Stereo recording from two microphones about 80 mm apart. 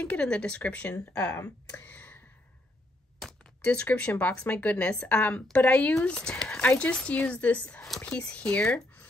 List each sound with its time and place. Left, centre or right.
0.0 s speech: centre
1.7 s a sound: centre
3.6 s speech: centre